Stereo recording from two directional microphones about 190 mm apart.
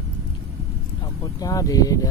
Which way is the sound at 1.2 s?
20° left (ahead or behind).